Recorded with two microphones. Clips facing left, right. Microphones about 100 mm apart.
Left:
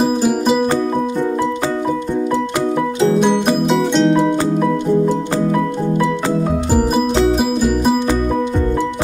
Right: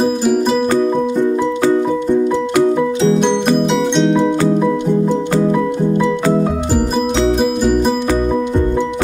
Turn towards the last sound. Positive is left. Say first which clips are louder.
# right 2 dB
turn(degrees=5)  # may be behind; listen again after turning